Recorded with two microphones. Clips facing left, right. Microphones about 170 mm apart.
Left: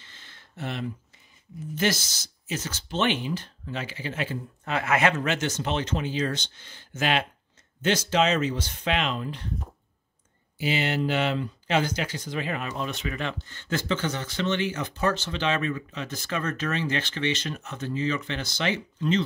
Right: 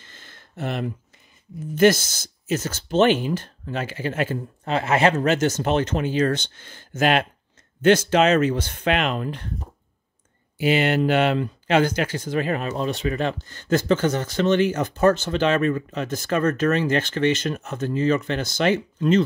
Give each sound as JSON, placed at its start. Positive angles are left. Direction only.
{"t": 0.0, "sound": "a sound", "side_deg": -45}
{"t": 1.8, "sound": "speech", "side_deg": -50}
{"t": 4.6, "sound": "speech", "side_deg": -30}
{"t": 10.6, "sound": "speech", "side_deg": -55}